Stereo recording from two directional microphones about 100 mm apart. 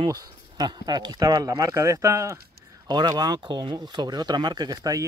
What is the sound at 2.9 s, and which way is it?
Speech, 45° right (ahead or behind).